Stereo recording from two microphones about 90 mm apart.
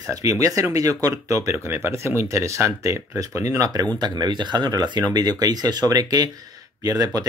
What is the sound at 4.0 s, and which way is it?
Speech, 55° right (ahead or behind).